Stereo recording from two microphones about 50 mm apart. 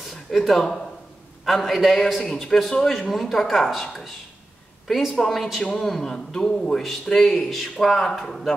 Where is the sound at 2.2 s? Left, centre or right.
Centre.